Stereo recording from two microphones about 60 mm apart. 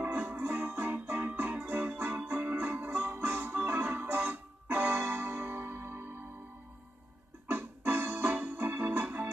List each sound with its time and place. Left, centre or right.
0.0 s music: right
7.4 s keyboard: right
9.0 s music: right